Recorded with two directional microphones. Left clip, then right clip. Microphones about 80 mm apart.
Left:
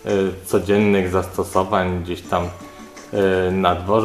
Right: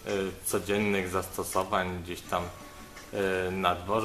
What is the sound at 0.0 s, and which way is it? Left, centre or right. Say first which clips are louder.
Speech: left 12 dB; right.